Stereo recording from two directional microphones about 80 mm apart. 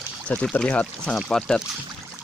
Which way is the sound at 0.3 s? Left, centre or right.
Centre.